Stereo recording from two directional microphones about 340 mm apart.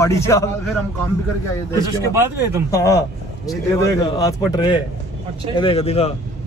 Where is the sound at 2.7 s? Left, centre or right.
Centre.